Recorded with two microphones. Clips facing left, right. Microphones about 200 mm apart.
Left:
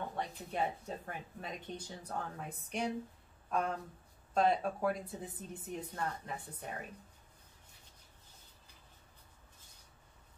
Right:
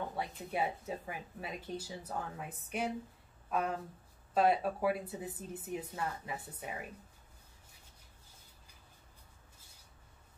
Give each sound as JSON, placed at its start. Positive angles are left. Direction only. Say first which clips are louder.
{"t": 0.5, "sound": "speech", "louder": "right 2 dB", "side_deg": -5}